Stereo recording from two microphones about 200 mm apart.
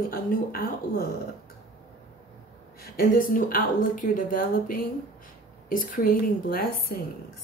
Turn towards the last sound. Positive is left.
turn(degrees=45)  # may be behind; listen again after turning